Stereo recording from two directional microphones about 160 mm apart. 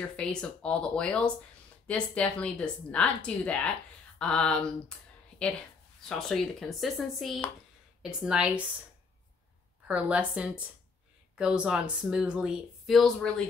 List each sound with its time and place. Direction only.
0.1 s a woman's voice: 5° left (ahead or behind)
5.9 s speech: 5° left (ahead or behind)
9.8 s a woman's voice: 5° right (ahead or behind)